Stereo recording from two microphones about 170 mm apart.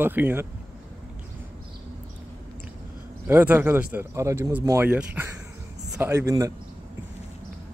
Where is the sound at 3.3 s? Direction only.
10° right (ahead or behind).